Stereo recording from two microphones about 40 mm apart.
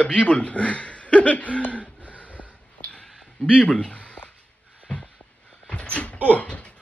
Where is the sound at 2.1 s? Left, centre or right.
Left.